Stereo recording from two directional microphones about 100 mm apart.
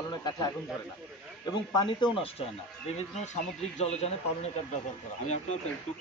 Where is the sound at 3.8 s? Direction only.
90° left.